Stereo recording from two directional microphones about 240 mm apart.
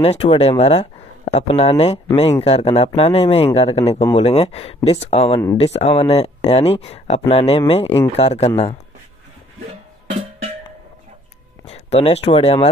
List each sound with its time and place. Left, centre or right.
0.0 s speech: left
11.6 s speech: left